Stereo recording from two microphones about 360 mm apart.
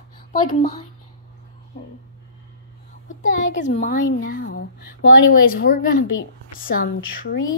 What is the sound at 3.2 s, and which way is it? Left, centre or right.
A woman's voice, left.